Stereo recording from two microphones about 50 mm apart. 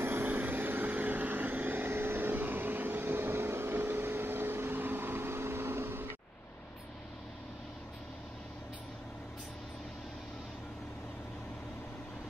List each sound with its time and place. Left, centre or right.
0.0 s vehicle: right